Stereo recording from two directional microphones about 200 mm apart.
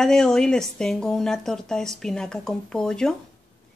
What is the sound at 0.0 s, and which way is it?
Speech, 5° left (ahead or behind).